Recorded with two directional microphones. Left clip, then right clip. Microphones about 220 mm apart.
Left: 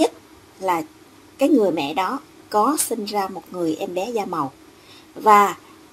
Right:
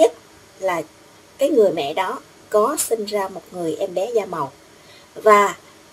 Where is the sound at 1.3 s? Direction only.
30° left (ahead or behind).